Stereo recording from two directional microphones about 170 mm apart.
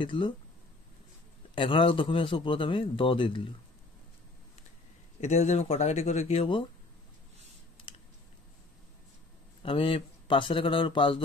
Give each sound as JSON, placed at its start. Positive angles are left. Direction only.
{"t": 0.0, "sound": "speech", "side_deg": 30}
{"t": 1.5, "sound": "a man's voice", "side_deg": 30}
{"t": 5.2, "sound": "a man's voice", "side_deg": 40}
{"t": 9.6, "sound": "a man's voice", "side_deg": 30}